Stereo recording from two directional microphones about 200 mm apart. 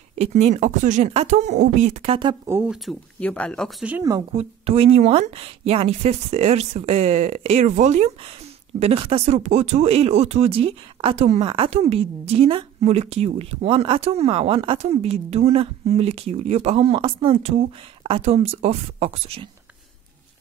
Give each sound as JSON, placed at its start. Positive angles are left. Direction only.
{"t": 0.2, "sound": "speech", "side_deg": -35}
{"t": 2.4, "sound": "speech", "side_deg": -10}
{"t": 3.8, "sound": "speech", "side_deg": -15}
{"t": 4.4, "sound": "speech", "side_deg": -30}